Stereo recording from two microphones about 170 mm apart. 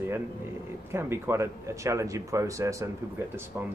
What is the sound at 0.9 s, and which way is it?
Speech, 15° right (ahead or behind).